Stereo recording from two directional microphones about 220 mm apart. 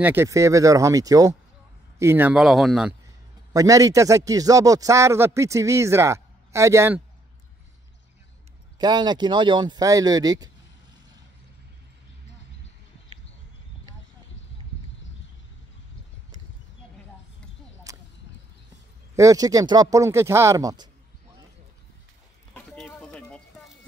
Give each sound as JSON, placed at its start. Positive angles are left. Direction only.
{"t": 0.0, "sound": "speech", "side_deg": -10}
{"t": 3.5, "sound": "speech", "side_deg": -15}
{"t": 8.7, "sound": "speech", "side_deg": -20}
{"t": 17.9, "sound": "whip", "side_deg": -15}
{"t": 19.1, "sound": "speech", "side_deg": -15}
{"t": 22.5, "sound": "a sound", "side_deg": 5}